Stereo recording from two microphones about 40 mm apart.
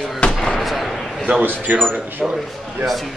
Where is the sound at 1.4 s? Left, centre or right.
Right.